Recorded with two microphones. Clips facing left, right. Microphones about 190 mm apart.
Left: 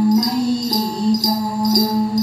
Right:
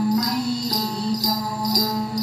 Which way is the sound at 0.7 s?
45° left (ahead or behind).